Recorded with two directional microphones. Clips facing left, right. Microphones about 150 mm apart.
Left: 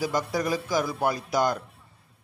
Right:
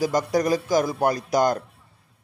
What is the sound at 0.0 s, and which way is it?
A man's voice, 40° right (ahead or behind).